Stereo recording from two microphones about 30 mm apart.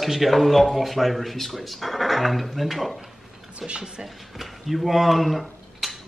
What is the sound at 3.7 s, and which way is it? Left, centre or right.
Speech, right.